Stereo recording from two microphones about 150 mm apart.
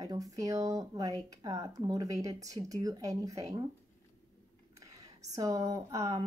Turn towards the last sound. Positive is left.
turn(degrees=-20)  # may be behind; listen again after turning